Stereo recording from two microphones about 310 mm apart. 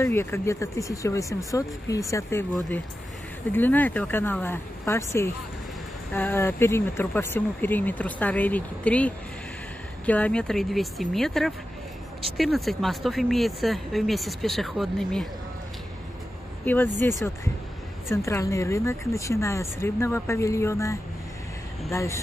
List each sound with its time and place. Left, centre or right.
0.0 s speech: centre
16.6 s speech: centre
18.0 s speech: centre